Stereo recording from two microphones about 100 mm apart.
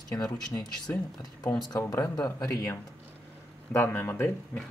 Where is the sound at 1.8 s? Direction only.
35° left (ahead or behind).